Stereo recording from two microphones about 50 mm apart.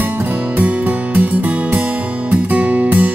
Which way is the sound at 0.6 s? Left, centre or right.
Right.